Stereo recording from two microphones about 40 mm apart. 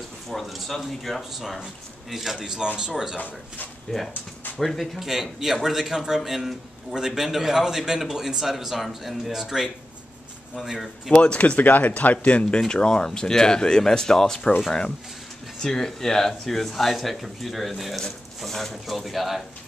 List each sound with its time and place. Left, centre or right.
0.3 s a man's voice: centre
3.9 s speech: centre
5.0 s a man's voice: centre
11.1 s speech: left
11.6 s speech: left; by 14.4 s centre
15.6 s speech: centre